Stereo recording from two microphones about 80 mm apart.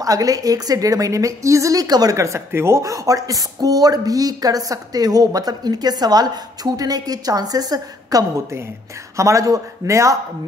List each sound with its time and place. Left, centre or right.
0.0 s speech: right
2.1 s speech: right
9.1 s a man's voice: right